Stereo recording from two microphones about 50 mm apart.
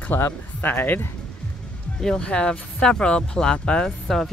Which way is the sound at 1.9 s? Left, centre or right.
Centre.